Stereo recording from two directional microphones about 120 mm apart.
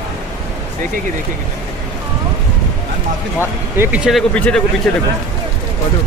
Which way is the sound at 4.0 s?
Centre (ahead or behind).